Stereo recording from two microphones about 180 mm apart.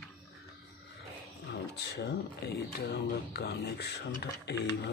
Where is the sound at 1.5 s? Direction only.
65° left (ahead or behind).